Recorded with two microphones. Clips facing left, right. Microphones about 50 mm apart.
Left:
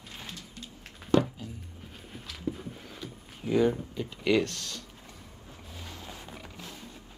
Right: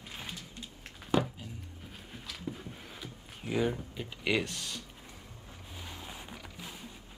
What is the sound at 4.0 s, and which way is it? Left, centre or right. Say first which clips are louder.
Speech: left 5 dB; centre.